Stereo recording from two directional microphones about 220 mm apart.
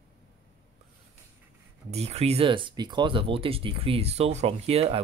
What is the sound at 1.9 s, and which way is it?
Speech, 30° right (ahead or behind).